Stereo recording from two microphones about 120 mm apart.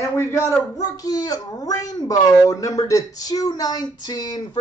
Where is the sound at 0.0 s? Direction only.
25° left (ahead or behind).